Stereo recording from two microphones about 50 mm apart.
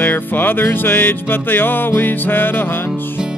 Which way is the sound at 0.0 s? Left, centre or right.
Left.